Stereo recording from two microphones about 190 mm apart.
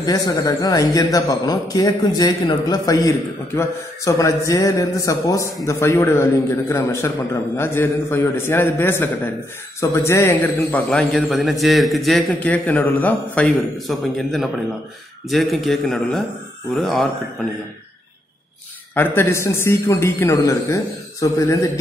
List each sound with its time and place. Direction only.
0.0 s a man's voice: 20° left (ahead or behind); by 17.1 s centre (ahead or behind)
18.9 s a man's voice: 10° left (ahead or behind)